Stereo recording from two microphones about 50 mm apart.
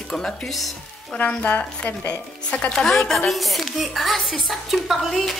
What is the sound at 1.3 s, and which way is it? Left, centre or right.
Speech, left.